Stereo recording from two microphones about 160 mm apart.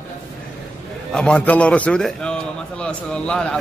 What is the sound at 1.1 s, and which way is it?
A man's voice, 5° left (ahead or behind).